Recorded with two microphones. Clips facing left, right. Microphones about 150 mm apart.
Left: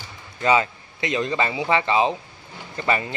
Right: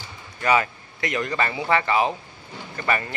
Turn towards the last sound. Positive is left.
turn(degrees=20)  # may be behind; listen again after turning